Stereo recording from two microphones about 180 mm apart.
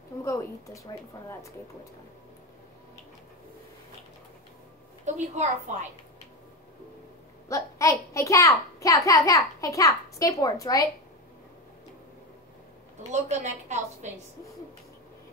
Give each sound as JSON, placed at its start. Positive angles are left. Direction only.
{"t": 0.2, "sound": "speech", "side_deg": 15}
{"t": 5.0, "sound": "a woman's voice", "side_deg": -40}
{"t": 7.4, "sound": "a child's voice", "side_deg": 15}
{"t": 13.1, "sound": "a woman's voice", "side_deg": -40}